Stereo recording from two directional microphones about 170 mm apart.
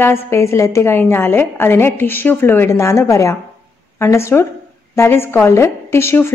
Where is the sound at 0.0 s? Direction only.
15° left (ahead or behind).